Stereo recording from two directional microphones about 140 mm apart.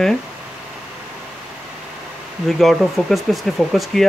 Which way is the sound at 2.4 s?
Centre (ahead or behind).